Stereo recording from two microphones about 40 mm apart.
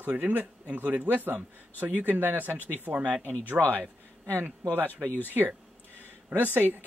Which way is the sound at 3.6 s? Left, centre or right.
Right.